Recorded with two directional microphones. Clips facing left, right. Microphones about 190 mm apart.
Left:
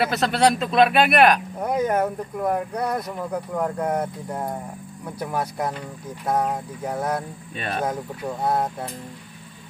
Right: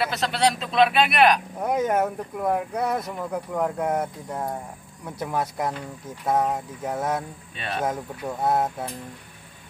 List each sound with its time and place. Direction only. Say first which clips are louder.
0.1 s speech: left 4 dB; 50° left (ahead or behind)
1.6 s speech: even; centre (ahead or behind)
7.5 s speech: left 2 dB; 45° left (ahead or behind)
8.5 s speech: right 1 dB; 5° right (ahead or behind)